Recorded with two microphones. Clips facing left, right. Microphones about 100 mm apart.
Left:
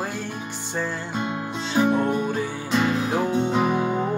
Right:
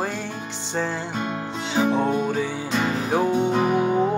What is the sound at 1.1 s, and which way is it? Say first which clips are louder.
Music: even; 20° left (ahead or behind).